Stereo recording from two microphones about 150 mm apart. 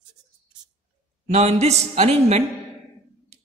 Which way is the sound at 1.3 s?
45° right (ahead or behind).